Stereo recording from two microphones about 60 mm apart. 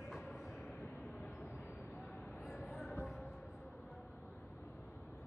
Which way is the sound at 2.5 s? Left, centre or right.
Centre.